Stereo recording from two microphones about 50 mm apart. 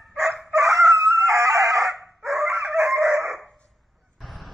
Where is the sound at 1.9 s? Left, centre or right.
Centre.